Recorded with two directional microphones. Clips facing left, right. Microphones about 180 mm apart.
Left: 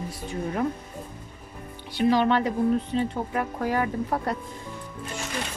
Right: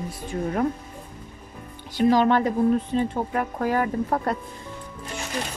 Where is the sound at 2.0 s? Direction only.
45° right (ahead or behind).